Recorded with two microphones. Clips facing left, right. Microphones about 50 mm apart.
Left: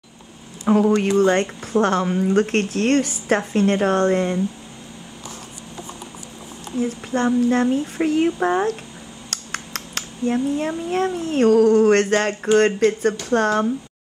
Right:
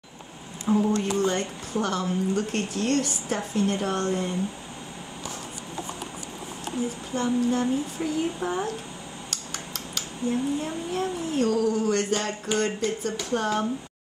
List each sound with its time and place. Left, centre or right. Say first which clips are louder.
0.7 s a woman's voice: left 7 dB; left
7.2 s a woman's voice: left 6 dB; left
9.3 s a sound: left 9 dB; left
10.9 s a woman's voice: left 6 dB; left